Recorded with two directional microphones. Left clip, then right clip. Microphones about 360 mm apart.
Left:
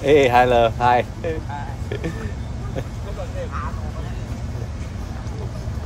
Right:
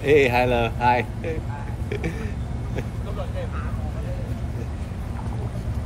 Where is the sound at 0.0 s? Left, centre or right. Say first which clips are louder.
Left 4 dB; centre.